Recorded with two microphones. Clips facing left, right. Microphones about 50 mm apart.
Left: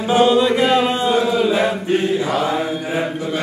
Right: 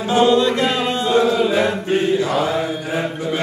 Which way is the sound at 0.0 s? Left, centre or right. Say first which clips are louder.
Left 1 dB; centre.